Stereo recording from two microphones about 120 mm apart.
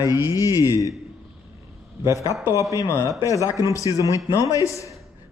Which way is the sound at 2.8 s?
25° left (ahead or behind).